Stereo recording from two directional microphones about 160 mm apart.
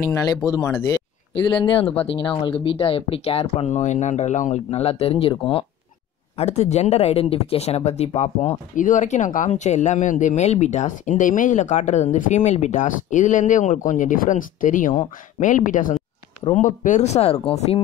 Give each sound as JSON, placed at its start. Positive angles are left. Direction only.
{"t": 0.0, "sound": "speech", "side_deg": 25}
{"t": 1.3, "sound": "speech", "side_deg": 35}